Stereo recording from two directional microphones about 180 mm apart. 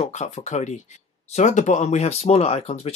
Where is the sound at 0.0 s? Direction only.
40° left (ahead or behind).